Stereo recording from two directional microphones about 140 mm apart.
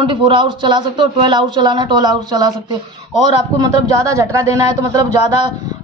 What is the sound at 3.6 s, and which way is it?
A man's voice, 25° right (ahead or behind).